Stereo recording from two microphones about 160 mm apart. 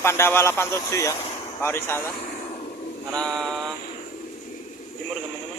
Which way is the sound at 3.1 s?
5° left (ahead or behind).